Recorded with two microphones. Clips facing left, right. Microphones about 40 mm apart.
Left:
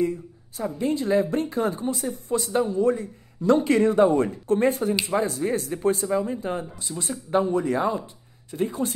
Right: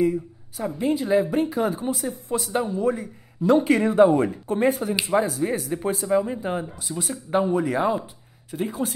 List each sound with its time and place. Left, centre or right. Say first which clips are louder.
0.0 s a woman's voice: right 3 dB; centre
6.2 s speech: right 1 dB; centre